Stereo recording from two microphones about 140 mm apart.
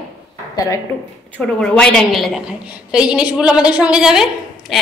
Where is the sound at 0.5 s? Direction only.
25° left (ahead or behind).